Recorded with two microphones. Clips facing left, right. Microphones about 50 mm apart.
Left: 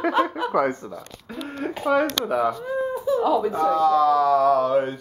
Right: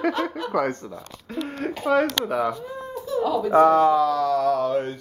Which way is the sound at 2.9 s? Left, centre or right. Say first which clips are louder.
Left 2 dB; centre.